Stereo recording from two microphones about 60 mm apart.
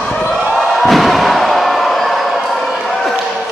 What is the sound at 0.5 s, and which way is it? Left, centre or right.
Slam, centre.